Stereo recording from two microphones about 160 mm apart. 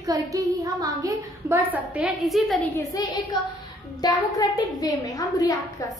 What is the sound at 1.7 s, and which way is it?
Speech, 10° right (ahead or behind).